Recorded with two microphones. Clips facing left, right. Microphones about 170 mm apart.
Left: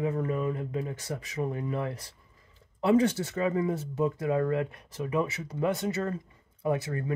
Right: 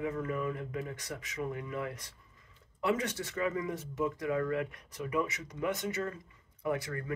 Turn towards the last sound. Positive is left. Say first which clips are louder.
# left 5 dB
turn(degrees=25)  # may be behind; listen again after turning